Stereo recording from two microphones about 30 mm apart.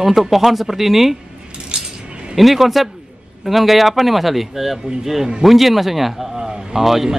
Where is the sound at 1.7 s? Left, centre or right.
Right.